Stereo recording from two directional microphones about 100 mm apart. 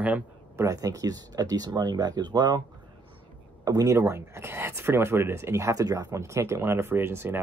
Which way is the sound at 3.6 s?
35° right (ahead or behind).